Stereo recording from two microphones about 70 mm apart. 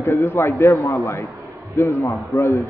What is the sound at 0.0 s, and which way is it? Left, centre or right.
A man's voice, left.